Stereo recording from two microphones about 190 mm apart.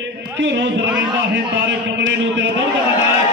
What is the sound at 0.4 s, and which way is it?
A man's voice, 70° right (ahead or behind).